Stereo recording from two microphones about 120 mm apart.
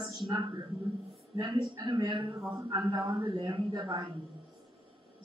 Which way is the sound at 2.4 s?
25° right (ahead or behind).